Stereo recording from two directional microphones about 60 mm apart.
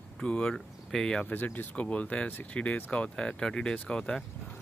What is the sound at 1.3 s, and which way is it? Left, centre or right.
Speech, left.